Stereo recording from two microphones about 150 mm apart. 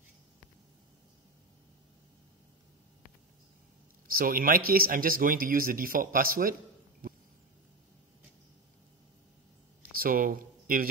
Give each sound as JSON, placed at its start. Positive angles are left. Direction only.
{"t": 4.2, "sound": "speech", "side_deg": -75}
{"t": 9.9, "sound": "speech", "side_deg": -70}